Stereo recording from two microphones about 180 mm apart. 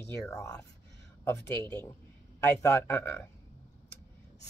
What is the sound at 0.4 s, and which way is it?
Speech, 15° left (ahead or behind).